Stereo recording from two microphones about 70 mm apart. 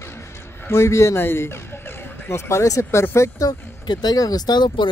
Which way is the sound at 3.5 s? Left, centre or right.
Left.